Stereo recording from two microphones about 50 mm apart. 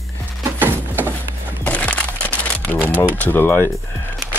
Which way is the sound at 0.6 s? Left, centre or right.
Right.